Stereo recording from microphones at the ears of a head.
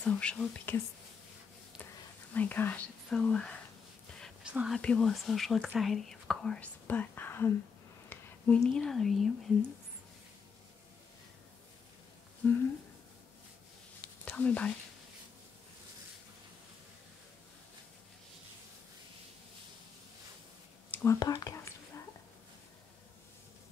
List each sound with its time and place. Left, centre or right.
0.0 s speech: left
4.7 s speech: left
12.4 s speech: left
14.0 s whispering: left
21.0 s whispering: left